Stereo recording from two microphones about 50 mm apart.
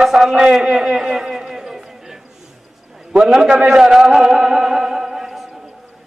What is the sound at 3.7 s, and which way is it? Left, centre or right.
Music, centre.